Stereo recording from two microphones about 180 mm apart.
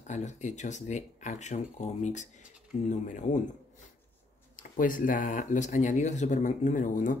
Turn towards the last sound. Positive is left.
turn(degrees=45)  # may be behind; listen again after turning